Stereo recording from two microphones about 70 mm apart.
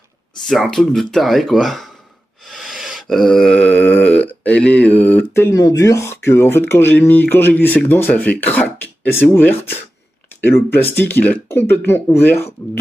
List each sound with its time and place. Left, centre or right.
0.5 s speech: centre
2.4 s a sound: centre; by 5.2 s left
5.5 s speech: left